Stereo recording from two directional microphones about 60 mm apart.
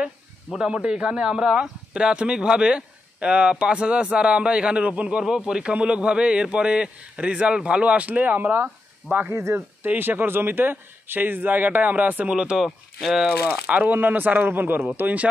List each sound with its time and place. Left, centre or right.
0.5 s a man's voice: centre; by 8.5 s right
9.3 s speech: right
9.8 s a man's voice: right; by 12.5 s centre
12.5 s speech: centre
13.5 s a man's voice: right